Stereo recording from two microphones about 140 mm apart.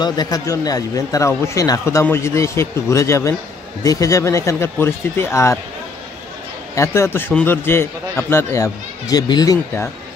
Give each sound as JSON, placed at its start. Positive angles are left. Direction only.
{"t": 0.0, "sound": "a man's voice", "side_deg": 30}
{"t": 6.7, "sound": "a man's voice", "side_deg": 20}